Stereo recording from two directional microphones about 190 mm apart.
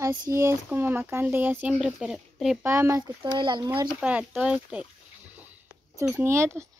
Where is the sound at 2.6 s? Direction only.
15° right (ahead or behind).